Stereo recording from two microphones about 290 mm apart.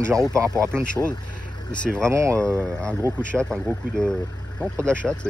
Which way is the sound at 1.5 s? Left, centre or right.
Centre.